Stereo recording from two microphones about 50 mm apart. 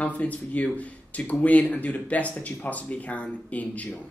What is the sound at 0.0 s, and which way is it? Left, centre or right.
Speech, left.